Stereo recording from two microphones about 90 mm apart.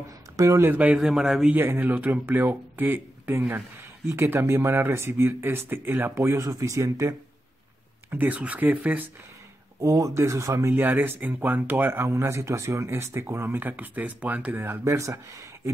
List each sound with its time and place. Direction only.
0.6 s a man's voice: 20° right (ahead or behind)
1.5 s speech: 20° right (ahead or behind)
8.1 s speech: 20° right (ahead or behind)
9.8 s speech: 40° right (ahead or behind)
10.7 s speech: 20° right (ahead or behind)